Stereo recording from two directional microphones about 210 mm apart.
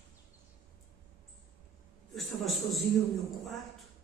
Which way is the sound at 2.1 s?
Centre (ahead or behind).